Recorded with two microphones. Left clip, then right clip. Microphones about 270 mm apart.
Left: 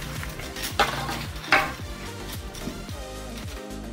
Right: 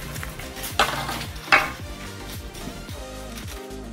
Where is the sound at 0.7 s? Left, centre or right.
Centre.